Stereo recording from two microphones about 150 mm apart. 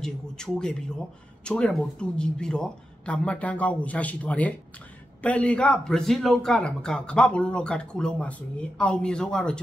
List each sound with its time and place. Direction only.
0.0 s speech: 5° left (ahead or behind)